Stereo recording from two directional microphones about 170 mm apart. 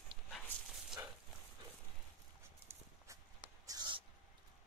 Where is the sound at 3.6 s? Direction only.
25° right (ahead or behind).